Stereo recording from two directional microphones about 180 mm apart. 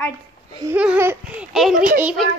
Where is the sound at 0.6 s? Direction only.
10° right (ahead or behind).